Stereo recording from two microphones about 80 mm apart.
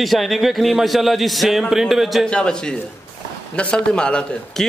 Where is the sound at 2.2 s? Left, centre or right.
Centre.